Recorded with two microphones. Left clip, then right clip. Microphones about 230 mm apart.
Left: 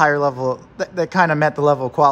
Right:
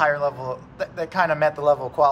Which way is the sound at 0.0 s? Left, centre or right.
Left.